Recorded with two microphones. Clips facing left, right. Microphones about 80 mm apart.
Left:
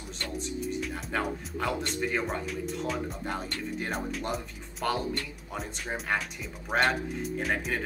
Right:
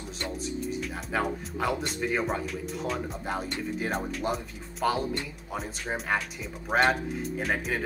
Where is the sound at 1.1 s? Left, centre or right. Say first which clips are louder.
Right 3 dB; centre.